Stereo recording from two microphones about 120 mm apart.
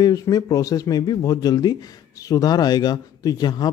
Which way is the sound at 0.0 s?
30° left (ahead or behind).